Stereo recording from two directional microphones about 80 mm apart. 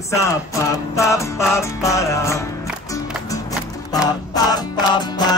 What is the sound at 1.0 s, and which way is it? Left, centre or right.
Music, left.